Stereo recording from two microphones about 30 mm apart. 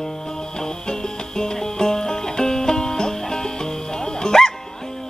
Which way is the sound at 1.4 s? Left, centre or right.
Centre.